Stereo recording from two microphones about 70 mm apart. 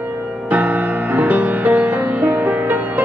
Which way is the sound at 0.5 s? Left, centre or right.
Right.